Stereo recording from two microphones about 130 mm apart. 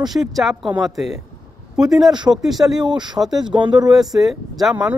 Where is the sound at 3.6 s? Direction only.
35° right (ahead or behind).